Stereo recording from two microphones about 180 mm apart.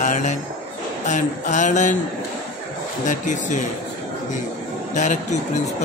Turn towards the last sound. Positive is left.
turn(degrees=45)  # may be behind; listen again after turning